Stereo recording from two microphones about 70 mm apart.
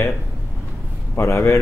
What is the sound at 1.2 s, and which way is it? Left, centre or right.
Speech, left.